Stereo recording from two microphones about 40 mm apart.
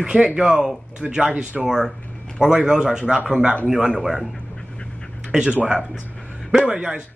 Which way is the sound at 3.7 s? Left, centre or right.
Centre.